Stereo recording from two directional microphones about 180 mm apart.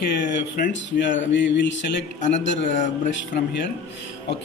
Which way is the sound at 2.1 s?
40° left (ahead or behind).